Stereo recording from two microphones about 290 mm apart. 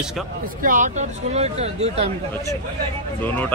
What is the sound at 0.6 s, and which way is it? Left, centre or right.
Speech, right.